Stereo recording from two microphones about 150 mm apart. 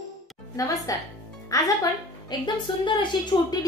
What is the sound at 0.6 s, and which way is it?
Music, 25° left (ahead or behind).